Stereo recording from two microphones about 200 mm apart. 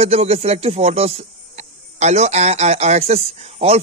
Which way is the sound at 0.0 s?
30° right (ahead or behind).